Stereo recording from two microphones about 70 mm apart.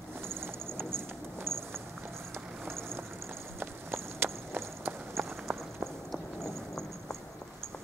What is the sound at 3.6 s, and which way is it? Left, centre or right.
Walk, right.